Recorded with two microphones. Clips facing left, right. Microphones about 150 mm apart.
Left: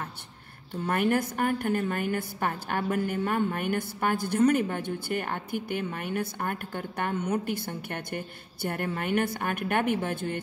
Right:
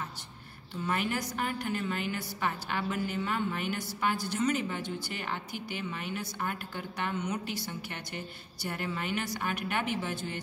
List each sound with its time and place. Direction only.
0.8 s a woman's voice: 50° left (ahead or behind)